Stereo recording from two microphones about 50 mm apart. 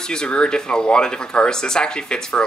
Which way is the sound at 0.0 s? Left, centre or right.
Centre.